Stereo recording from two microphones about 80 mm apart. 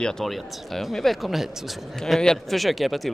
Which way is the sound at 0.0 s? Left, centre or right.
Centre.